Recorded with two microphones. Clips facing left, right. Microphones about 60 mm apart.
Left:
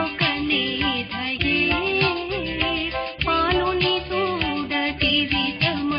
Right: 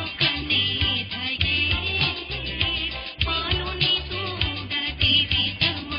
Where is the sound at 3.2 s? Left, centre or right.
Left.